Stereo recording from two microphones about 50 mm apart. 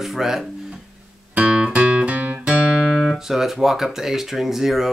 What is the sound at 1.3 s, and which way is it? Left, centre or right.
Music, right.